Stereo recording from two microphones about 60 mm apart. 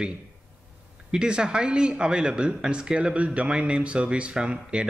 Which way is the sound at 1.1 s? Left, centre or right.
Centre.